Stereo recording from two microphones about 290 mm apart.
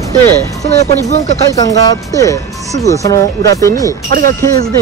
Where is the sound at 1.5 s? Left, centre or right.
Centre.